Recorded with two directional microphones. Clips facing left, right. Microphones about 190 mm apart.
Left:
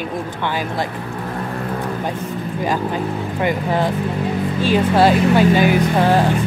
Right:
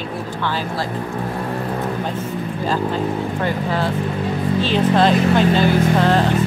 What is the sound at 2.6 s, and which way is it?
Speech, 15° left (ahead or behind).